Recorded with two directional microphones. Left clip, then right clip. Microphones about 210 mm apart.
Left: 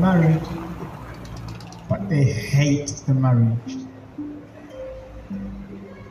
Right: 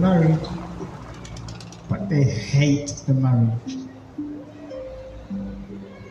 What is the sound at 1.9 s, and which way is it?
Speech, 45° left (ahead or behind).